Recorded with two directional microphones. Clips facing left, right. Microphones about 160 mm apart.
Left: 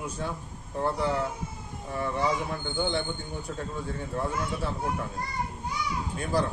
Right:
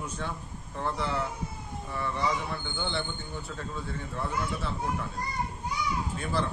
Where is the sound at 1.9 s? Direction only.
40° left (ahead or behind).